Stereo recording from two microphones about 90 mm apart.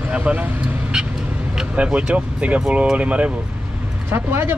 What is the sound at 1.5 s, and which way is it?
Speech, 15° right (ahead or behind).